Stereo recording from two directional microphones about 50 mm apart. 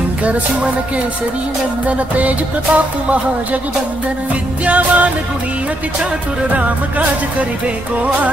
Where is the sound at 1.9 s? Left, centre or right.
Right.